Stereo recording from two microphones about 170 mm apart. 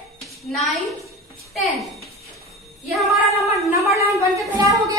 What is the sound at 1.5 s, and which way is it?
Speech, centre (ahead or behind).